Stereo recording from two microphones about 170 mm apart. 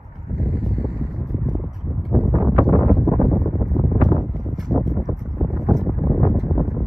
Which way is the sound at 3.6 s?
Centre (ahead or behind).